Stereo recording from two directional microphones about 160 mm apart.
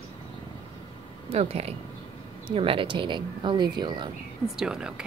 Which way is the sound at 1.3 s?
40° right (ahead or behind).